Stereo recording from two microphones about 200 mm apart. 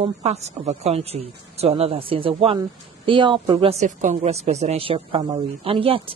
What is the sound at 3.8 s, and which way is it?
Speech, 35° right (ahead or behind).